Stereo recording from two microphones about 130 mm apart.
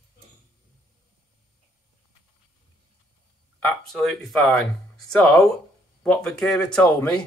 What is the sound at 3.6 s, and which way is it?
Speech, 5° left (ahead or behind).